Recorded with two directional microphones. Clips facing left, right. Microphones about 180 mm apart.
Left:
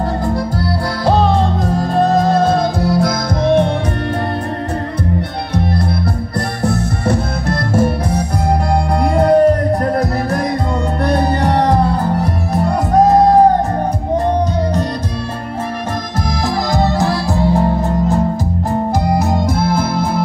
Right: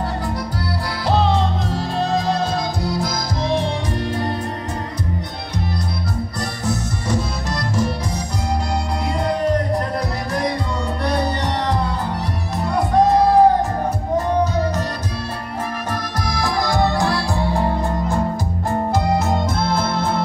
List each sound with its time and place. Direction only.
1.0 s music: 50° left (ahead or behind)
6.6 s music: 60° left (ahead or behind)
11.0 s music: 50° left (ahead or behind)
16.4 s music: 20° left (ahead or behind)
19.7 s music: 10° left (ahead or behind)